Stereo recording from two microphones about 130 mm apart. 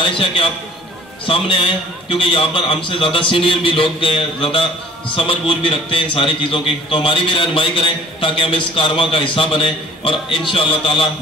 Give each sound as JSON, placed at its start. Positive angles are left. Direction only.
{"t": 0.0, "sound": "a man's voice", "side_deg": 45}